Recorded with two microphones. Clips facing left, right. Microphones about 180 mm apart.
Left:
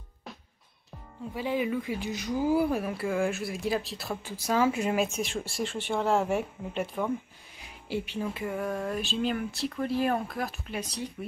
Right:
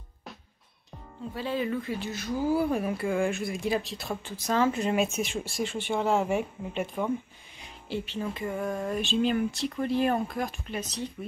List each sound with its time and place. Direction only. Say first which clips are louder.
1.3 s speech: left 1 dB; 15° left (ahead or behind)
7.6 s speech: left 1 dB; 10° left (ahead or behind)